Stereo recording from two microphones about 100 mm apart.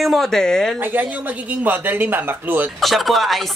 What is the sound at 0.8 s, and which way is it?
Speech, 20° right (ahead or behind).